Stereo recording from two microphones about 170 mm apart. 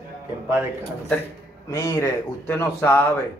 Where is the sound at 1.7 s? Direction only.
20° left (ahead or behind).